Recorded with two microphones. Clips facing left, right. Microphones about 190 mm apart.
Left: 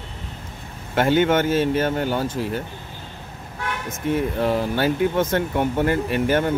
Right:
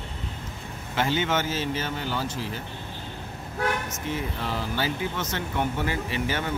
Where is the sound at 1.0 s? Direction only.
55° left (ahead or behind).